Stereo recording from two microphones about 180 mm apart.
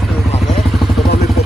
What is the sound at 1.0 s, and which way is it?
Vehicle, 65° left (ahead or behind).